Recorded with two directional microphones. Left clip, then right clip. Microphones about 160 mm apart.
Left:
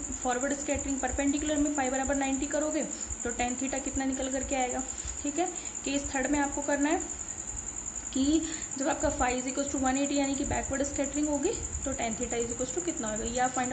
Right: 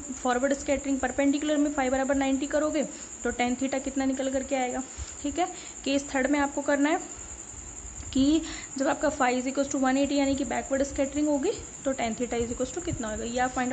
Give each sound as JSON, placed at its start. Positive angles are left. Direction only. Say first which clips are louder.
{"t": 0.2, "sound": "speech", "louder": "right 5 dB", "side_deg": -35}
{"t": 8.1, "sound": "speech", "louder": "right 3 dB", "side_deg": -40}